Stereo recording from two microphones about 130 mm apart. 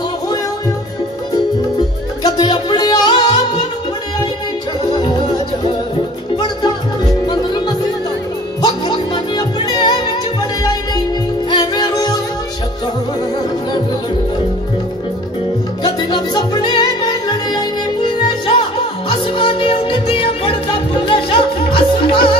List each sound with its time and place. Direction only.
2.2 s music: 35° left (ahead or behind)
4.9 s music: 35° left (ahead or behind)
11.5 s music: 35° left (ahead or behind)
15.8 s music: 35° left (ahead or behind)